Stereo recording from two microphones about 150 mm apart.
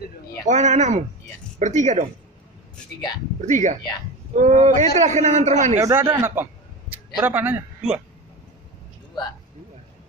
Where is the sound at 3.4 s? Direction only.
55° right (ahead or behind).